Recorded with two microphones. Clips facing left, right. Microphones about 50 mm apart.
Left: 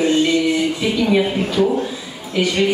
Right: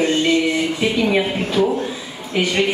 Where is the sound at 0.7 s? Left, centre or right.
Right.